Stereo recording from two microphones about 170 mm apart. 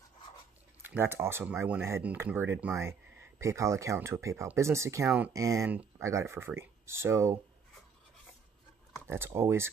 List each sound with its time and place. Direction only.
0.8 s speech: 15° right (ahead or behind)
9.0 s speech: 15° right (ahead or behind)